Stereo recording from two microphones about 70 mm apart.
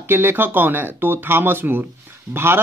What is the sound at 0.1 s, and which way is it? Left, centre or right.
Speech, right.